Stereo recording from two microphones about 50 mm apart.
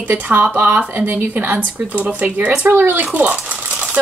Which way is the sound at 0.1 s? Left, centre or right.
Right.